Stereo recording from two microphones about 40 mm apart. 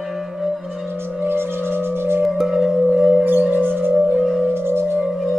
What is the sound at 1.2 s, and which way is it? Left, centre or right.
Singing bowl, right.